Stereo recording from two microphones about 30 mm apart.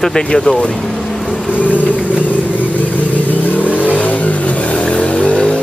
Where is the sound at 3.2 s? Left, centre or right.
Left.